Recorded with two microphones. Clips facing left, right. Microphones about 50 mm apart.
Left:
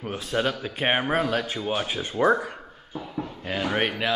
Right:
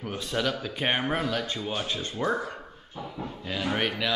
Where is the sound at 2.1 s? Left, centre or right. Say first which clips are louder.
Left 8 dB; left.